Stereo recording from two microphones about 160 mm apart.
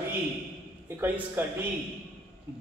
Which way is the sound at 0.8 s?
10° right (ahead or behind).